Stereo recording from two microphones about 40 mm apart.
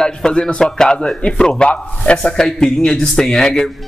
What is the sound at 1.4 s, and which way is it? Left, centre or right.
Music, left.